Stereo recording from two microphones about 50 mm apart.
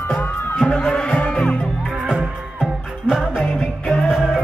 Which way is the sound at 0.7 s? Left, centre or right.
Centre.